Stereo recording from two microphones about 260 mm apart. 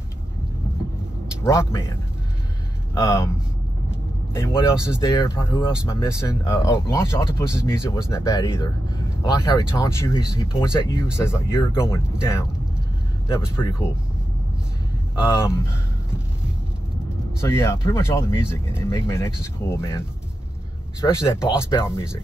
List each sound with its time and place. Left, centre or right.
1.4 s speech: centre
2.9 s speech: centre
4.4 s speech: centre
13.6 s speech: centre
15.2 s speech: centre
17.4 s speech: centre
21.0 s speech: centre